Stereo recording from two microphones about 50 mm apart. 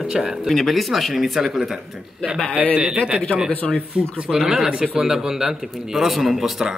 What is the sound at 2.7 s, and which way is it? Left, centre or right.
Speech, right.